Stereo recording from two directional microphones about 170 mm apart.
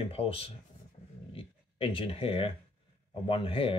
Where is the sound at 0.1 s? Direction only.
35° left (ahead or behind).